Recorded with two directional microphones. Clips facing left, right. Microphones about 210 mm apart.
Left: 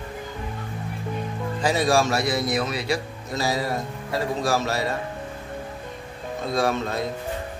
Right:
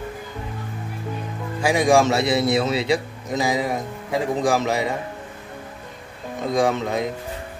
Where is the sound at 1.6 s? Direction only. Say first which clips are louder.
Right 4 dB; 15° right (ahead or behind).